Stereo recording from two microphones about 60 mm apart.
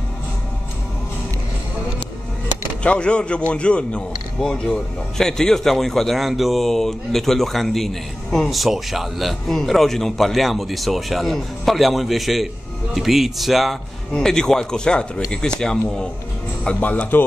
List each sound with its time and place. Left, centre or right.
2.8 s a man's voice: centre
14.1 s speech: centre
16.8 s a man's voice: left